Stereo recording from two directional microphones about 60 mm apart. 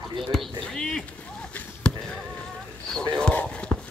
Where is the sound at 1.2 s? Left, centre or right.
Left.